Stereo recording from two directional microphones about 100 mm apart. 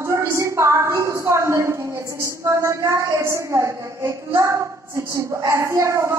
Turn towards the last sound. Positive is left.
turn(degrees=-30)  # may be behind; listen again after turning